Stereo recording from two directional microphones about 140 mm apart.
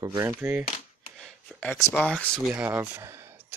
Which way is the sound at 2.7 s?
20° right (ahead or behind).